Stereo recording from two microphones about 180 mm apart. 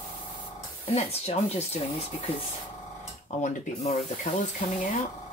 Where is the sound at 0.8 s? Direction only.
35° left (ahead or behind).